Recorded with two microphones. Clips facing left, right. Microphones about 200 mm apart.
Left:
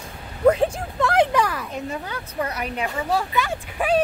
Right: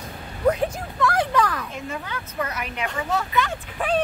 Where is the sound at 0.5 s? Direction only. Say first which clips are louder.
Left 3 dB; 25° left (ahead or behind).